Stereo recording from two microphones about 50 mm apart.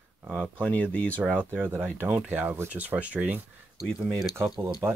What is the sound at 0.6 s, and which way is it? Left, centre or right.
Speech, left.